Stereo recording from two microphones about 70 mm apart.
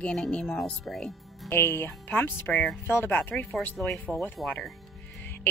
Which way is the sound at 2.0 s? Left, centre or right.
Left.